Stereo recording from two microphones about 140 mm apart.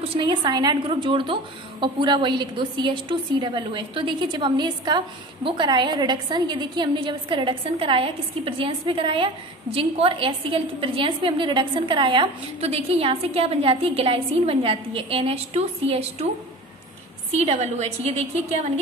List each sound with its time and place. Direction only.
0.1 s a woman's voice: 35° right (ahead or behind)
12.5 s a woman's voice: 50° right (ahead or behind)
17.4 s a woman's voice: 50° right (ahead or behind)